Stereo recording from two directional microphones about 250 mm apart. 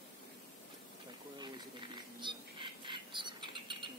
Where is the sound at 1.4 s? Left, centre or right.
Centre.